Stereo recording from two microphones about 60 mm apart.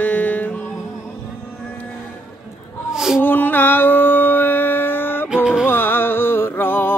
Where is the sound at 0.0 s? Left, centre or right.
Left.